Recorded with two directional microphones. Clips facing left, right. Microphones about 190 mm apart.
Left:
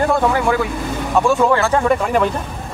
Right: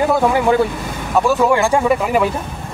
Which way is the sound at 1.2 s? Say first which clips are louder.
Right 1 dB; 5° right (ahead or behind).